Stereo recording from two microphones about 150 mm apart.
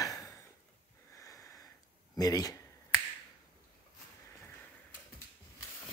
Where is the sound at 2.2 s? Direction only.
25° left (ahead or behind).